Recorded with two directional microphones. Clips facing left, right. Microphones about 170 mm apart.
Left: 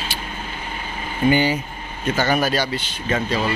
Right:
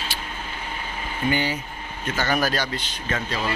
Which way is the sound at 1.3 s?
10° left (ahead or behind).